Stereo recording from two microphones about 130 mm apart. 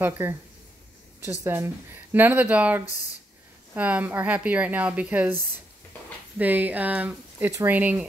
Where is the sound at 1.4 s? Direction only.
20° right (ahead or behind).